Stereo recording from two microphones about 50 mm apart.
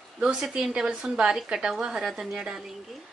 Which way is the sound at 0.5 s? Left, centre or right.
Centre.